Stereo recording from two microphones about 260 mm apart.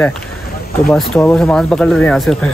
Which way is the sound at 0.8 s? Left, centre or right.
Centre.